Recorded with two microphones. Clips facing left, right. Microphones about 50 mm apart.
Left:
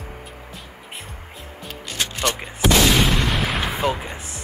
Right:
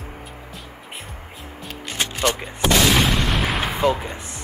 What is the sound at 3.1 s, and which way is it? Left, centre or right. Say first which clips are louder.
Artillery fire: even; centre.